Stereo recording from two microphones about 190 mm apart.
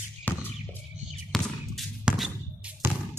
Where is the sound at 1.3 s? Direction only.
Centre (ahead or behind).